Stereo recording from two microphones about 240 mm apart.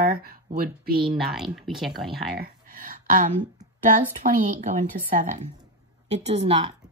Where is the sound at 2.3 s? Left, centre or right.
Right.